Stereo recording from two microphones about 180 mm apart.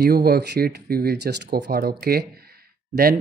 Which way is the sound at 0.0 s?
60° right (ahead or behind).